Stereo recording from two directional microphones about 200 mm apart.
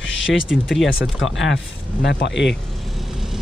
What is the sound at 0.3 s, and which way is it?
Speech, centre (ahead or behind).